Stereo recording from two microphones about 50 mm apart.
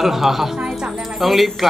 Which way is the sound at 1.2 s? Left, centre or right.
Centre.